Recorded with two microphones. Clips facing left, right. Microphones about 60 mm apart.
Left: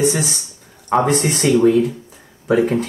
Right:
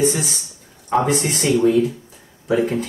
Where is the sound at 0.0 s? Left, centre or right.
Centre.